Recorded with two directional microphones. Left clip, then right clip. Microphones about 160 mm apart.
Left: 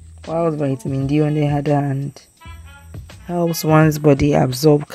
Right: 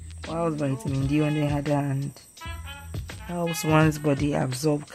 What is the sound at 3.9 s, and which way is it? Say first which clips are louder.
Speech: left 10 dB; 40° left (ahead or behind).